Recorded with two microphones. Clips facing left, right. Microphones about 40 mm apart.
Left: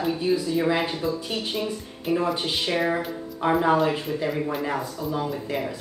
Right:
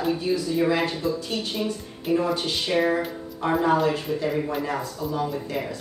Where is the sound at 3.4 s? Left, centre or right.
Centre.